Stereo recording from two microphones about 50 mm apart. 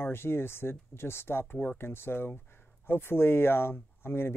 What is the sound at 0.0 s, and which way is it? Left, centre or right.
Speech, left.